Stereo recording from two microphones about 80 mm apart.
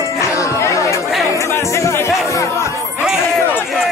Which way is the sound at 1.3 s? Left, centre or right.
Left.